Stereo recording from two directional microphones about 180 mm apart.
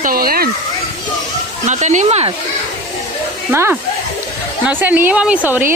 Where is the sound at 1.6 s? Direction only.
40° right (ahead or behind).